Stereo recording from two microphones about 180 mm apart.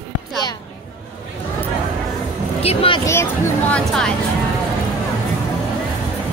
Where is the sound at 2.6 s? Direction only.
35° left (ahead or behind).